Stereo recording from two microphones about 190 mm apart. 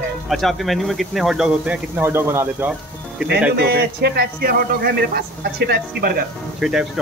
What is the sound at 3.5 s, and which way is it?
Speech, 55° right (ahead or behind).